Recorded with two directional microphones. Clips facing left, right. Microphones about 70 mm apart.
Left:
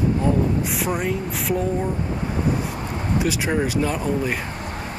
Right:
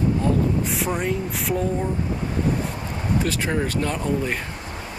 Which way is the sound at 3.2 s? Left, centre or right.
Centre.